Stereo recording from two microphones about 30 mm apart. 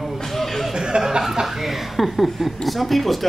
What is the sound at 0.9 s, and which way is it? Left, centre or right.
Speech, right.